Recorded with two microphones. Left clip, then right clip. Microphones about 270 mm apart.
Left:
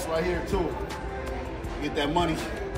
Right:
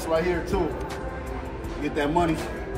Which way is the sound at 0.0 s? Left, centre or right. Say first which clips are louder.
Right 3 dB; centre.